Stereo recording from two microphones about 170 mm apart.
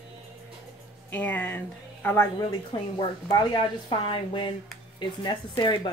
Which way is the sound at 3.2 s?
25° left (ahead or behind).